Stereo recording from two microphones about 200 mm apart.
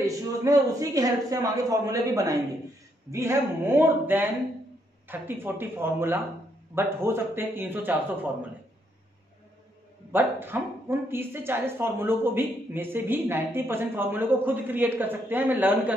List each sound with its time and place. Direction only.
0.0 s speech: 15° right (ahead or behind)
10.1 s speech: 10° right (ahead or behind)